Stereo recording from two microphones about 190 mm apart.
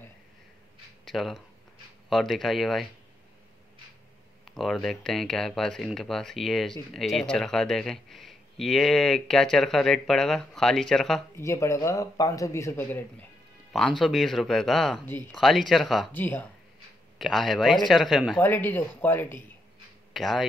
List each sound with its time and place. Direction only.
1.0 s speech: centre (ahead or behind)
4.5 s speech: centre (ahead or behind)
11.3 s speech: 15° left (ahead or behind)
13.7 s speech: centre (ahead or behind)
16.1 s speech: 10° left (ahead or behind)
17.2 s speech: centre (ahead or behind)
18.4 s speech: 10° left (ahead or behind)
20.1 s speech: centre (ahead or behind)